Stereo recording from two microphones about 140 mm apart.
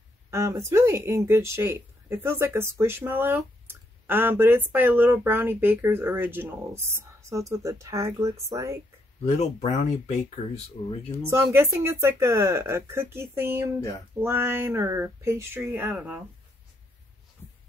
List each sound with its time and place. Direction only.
0.3 s speech: 20° right (ahead or behind)
9.2 s speech: 55° left (ahead or behind)
11.2 s speech: 20° right (ahead or behind)